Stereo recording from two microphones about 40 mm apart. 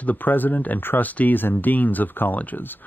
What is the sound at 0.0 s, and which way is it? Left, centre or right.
Speech, left.